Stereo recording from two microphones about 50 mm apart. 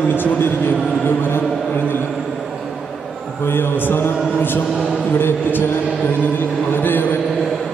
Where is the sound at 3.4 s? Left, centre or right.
Left.